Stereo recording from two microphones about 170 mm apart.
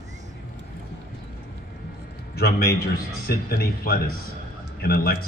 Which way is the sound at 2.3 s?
65° left (ahead or behind).